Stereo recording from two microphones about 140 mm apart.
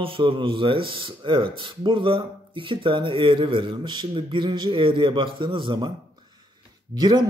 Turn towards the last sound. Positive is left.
turn(degrees=-30)  # may be behind; listen again after turning